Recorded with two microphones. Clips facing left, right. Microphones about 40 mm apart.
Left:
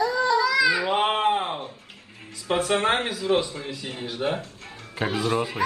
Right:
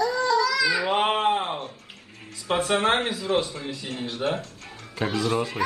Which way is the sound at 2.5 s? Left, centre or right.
Centre.